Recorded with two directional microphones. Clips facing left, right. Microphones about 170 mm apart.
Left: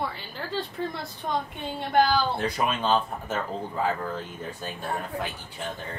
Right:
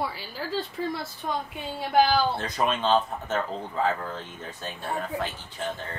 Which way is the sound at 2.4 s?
10° left (ahead or behind).